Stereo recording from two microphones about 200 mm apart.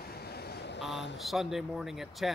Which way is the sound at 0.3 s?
55° left (ahead or behind).